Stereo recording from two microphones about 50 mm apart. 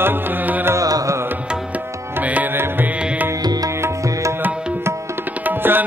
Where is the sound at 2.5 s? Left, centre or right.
Right.